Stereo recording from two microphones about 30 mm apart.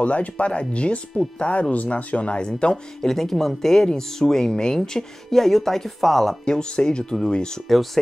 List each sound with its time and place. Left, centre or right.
0.0 s speech: left
0.5 s speech: left
2.4 s speech: left
3.0 s speech: centre
6.4 s speech: left
7.6 s speech: centre